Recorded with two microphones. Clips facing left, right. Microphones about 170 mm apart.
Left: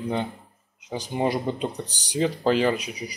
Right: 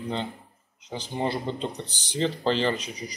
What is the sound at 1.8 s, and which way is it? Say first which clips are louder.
Speech: left 1 dB; 40° left (ahead or behind).